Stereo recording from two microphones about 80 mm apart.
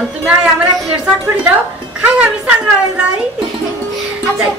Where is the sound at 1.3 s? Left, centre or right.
Centre.